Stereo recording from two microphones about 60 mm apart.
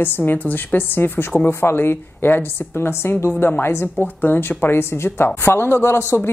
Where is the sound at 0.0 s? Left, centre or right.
Left.